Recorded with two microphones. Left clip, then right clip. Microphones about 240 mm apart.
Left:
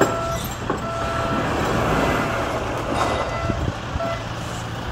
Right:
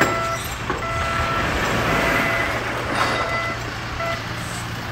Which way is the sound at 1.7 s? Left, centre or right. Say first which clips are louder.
Right 1 dB; left.